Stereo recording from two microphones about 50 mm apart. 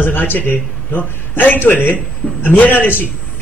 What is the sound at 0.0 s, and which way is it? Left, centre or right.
A man's voice, left.